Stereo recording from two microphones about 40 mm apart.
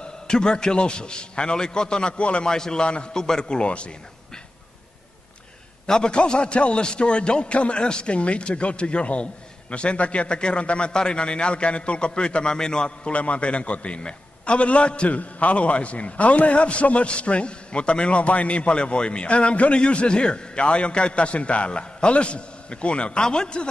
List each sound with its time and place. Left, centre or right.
0.0 s a man's voice: centre
2.4 s a man's voice: centre
5.9 s a man's voice: left
13.1 s a man's voice: left